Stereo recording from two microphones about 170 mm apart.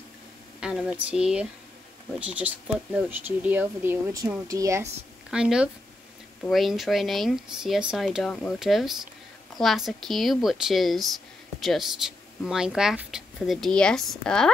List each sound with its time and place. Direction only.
0.6 s speech: 5° right (ahead or behind)
5.3 s speech: 5° right (ahead or behind)